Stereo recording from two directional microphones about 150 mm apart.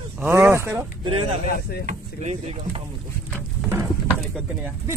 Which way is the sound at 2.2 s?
50° right (ahead or behind).